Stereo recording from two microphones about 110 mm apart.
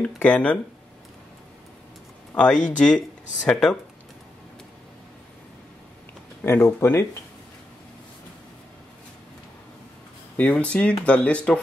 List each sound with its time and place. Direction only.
0.0 s speech: 10° left (ahead or behind)
2.3 s speech: 10° left (ahead or behind)
6.4 s speech: 20° left (ahead or behind)
10.3 s speech: 10° left (ahead or behind)